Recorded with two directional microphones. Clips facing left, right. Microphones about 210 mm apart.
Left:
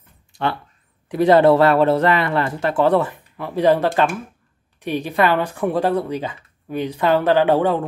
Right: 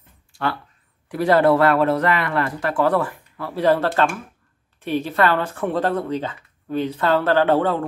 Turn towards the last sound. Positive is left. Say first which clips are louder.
# left 2 dB
turn(degrees=15)  # may be behind; listen again after turning